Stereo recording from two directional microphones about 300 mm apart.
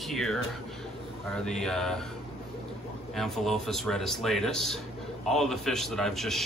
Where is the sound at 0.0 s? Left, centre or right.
Centre.